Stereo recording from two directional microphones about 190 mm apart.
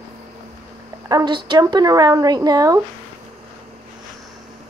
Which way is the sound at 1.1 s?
20° right (ahead or behind).